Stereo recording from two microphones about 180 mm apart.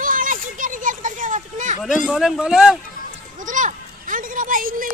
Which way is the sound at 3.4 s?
45° right (ahead or behind).